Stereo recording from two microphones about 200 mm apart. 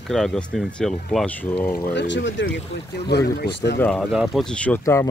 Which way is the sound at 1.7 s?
55° left (ahead or behind).